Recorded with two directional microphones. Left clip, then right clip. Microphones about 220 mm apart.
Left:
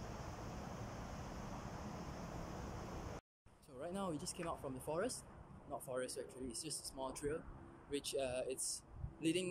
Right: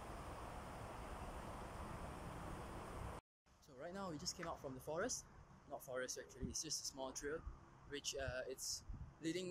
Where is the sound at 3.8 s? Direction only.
10° left (ahead or behind).